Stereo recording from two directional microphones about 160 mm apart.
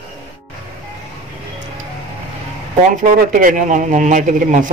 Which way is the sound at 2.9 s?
60° right (ahead or behind).